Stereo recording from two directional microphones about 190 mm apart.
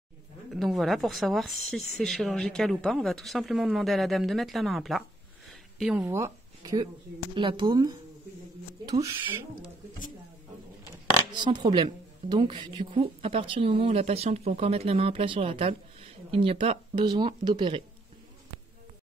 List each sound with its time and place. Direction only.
0.5 s speech: centre (ahead or behind)
6.0 s speech: 15° right (ahead or behind)
11.3 s speech: 25° right (ahead or behind)